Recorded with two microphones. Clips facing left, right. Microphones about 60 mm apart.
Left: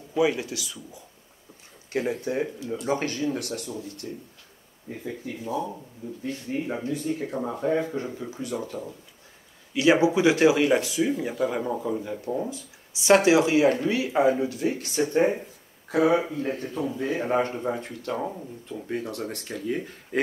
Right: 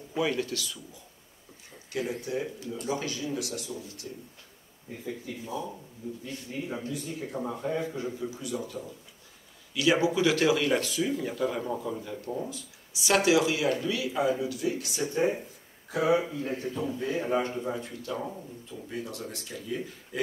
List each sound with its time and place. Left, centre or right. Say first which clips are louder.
0.2 s speech: left 5 dB; centre
1.9 s speech: left 5 dB; left
7.3 s speech: left 4 dB; left
7.6 s speech: left 7 dB; left
9.8 s speech: left 5 dB; left